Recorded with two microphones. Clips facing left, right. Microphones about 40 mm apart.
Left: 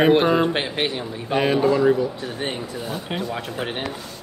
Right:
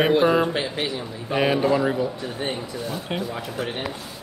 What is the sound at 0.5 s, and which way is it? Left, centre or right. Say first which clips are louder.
Speech: left 2 dB; left.